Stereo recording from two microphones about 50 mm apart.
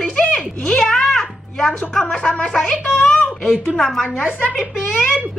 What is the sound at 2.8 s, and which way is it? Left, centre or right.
A child's voice, centre.